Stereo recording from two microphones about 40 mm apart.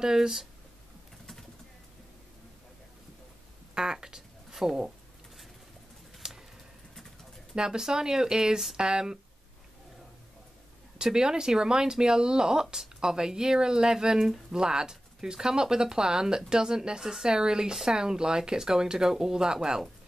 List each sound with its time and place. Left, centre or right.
0.0 s speech: centre
3.7 s speech: centre
6.2 s a sound: centre
7.5 s speech: centre
11.0 s speech: centre
14.1 s speech: centre
14.5 s speech: centre